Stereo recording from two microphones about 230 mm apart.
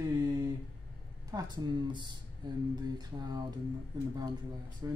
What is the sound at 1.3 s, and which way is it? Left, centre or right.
Speech, centre.